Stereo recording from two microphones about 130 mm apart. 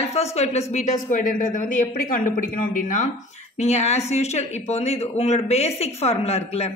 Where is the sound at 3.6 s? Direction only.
60° left (ahead or behind).